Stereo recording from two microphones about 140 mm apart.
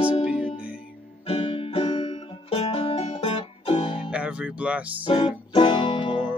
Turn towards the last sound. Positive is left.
turn(degrees=35)  # may be behind; listen again after turning